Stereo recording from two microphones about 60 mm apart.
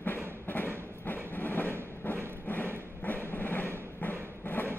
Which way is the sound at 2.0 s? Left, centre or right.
Left.